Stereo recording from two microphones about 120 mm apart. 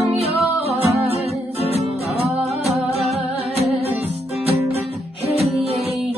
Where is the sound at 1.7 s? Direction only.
60° right (ahead or behind).